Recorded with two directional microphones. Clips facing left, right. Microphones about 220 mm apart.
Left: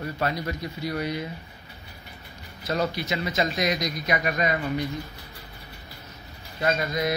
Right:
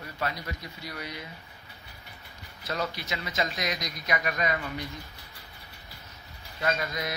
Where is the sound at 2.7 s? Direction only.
35° left (ahead or behind).